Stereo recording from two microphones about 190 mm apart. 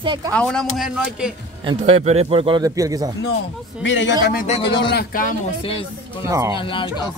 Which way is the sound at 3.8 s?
70° left (ahead or behind).